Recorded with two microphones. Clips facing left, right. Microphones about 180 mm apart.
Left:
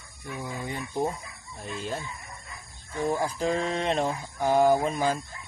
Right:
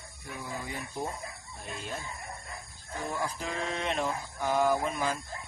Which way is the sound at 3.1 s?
35° left (ahead or behind).